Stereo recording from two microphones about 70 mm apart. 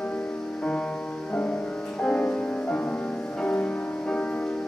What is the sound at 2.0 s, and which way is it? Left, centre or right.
Music, centre.